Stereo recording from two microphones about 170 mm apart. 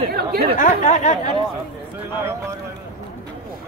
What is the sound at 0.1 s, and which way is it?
Speech, 65° right (ahead or behind).